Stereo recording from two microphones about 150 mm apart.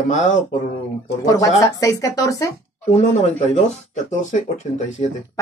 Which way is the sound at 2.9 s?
45° left (ahead or behind).